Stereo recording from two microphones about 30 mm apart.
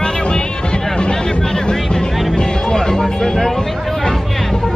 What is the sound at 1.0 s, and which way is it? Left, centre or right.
Speech, left.